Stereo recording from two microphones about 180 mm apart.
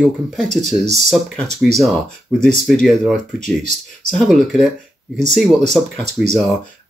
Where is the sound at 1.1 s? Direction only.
Centre (ahead or behind).